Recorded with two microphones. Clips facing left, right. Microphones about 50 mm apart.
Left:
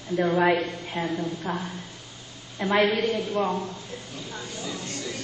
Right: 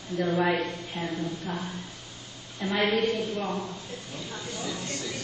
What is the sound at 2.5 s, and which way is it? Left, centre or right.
Speech, left.